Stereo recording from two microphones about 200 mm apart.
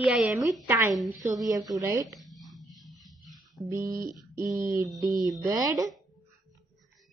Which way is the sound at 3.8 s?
45° right (ahead or behind).